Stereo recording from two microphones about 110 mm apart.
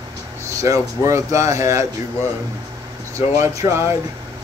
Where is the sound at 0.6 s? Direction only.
25° right (ahead or behind).